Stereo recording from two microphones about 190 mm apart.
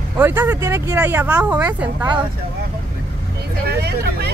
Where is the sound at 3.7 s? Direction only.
55° right (ahead or behind).